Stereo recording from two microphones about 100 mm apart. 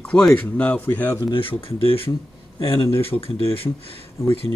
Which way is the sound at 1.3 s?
65° left (ahead or behind).